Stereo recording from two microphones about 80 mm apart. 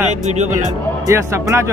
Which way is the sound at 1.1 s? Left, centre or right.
Right.